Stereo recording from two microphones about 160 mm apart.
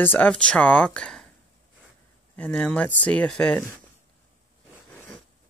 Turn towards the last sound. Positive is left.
turn(degrees=5)  # may be behind; listen again after turning